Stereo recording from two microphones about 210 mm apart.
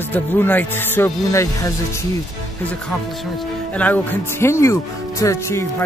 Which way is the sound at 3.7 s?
10° left (ahead or behind).